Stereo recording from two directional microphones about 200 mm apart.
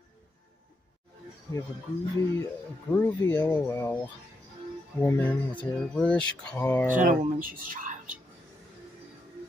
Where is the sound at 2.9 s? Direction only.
10° left (ahead or behind).